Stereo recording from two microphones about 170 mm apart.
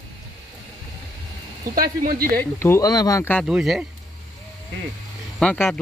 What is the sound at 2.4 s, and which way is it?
Speech, 15° left (ahead or behind).